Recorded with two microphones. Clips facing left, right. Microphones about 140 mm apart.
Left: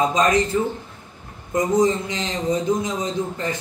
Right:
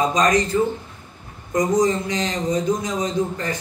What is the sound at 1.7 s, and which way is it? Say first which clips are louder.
A man's voice: even; 25° left (ahead or behind).